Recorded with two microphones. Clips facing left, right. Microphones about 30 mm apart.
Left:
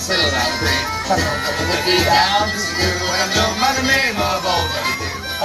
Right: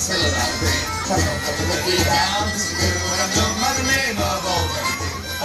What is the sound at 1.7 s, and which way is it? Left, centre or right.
Speech, left.